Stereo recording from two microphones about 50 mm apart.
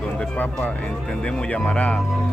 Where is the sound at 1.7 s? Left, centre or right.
Left.